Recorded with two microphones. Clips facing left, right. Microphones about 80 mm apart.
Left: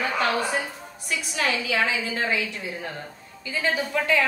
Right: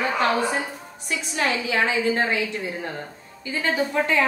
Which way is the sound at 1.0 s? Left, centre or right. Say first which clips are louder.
Right 2 dB; right.